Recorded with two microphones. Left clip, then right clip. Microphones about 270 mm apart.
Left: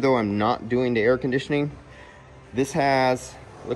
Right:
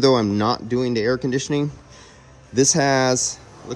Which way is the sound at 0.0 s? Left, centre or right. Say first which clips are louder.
Right 4 dB; centre.